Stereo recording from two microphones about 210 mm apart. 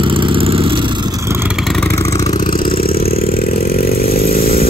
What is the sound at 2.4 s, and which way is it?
Vehicle, 40° left (ahead or behind).